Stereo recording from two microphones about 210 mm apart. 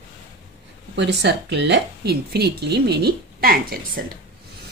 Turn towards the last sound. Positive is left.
turn(degrees=-45)  # may be behind; listen again after turning